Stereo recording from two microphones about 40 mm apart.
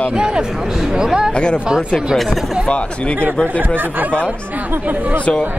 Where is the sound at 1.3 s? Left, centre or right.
Left.